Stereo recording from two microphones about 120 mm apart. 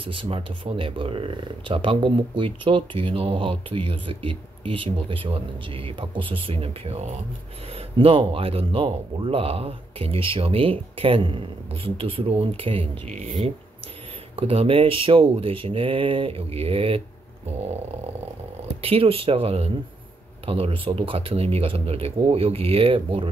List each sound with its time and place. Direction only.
0.0 s speech: 50° right (ahead or behind)
13.1 s speech: 70° right (ahead or behind)
14.3 s speech: 50° right (ahead or behind)
18.8 s speech: 55° right (ahead or behind)